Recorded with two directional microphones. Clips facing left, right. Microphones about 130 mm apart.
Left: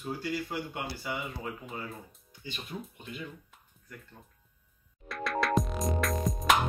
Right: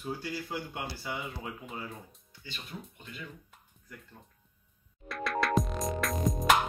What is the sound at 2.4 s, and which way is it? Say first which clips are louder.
Speech: left 4 dB; 20° left (ahead or behind).